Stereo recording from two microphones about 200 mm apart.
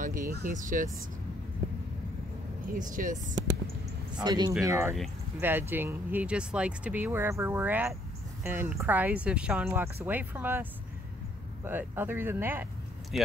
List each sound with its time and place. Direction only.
0.0 s speech: 40° right (ahead or behind)
2.7 s speech: 40° right (ahead or behind)
4.1 s speech: 20° right (ahead or behind); by 13.3 s centre (ahead or behind)